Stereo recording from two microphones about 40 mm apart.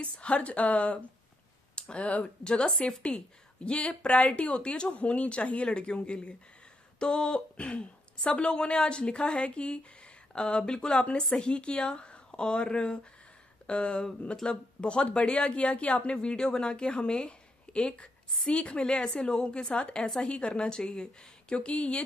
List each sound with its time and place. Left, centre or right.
0.0 s a woman's voice: left
1.8 s a sound: left
2.0 s a woman's voice: left
2.4 s a woman's voice: left
14.0 s a woman's voice: centre; by 16.0 s left
16.1 s a woman's voice: left